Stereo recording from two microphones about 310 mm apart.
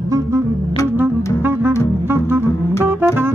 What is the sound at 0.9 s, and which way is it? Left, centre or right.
Music, centre.